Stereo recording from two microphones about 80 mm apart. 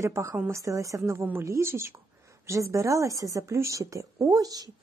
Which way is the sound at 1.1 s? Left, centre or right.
Right.